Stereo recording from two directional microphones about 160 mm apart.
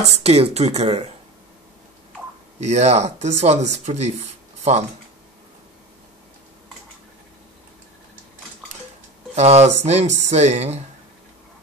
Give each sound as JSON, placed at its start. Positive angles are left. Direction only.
{"t": 0.2, "sound": "speech", "side_deg": -40}
{"t": 2.6, "sound": "speech", "side_deg": -45}
{"t": 9.3, "sound": "speech", "side_deg": -40}